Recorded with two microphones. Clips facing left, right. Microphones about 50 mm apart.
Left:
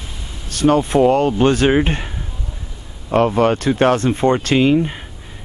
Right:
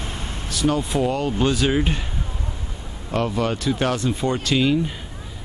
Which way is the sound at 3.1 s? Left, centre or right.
Left.